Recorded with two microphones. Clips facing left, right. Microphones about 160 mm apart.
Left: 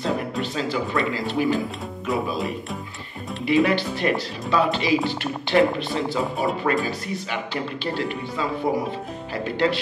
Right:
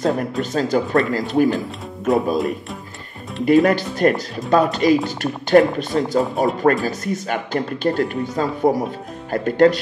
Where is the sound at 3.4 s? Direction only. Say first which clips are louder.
Right 5 dB; 45° right (ahead or behind).